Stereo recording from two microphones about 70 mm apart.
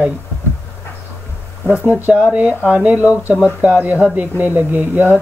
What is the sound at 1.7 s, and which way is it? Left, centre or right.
Speech, centre.